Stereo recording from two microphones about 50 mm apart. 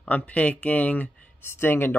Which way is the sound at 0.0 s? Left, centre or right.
Left.